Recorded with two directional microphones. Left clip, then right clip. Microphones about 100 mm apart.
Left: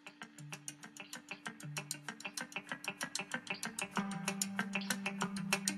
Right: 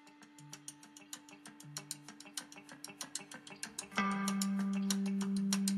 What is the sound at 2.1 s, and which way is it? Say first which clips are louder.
Music: left 5 dB; 15° right (ahead or behind).